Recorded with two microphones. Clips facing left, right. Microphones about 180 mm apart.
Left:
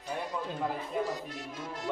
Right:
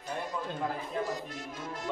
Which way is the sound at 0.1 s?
5° left (ahead or behind).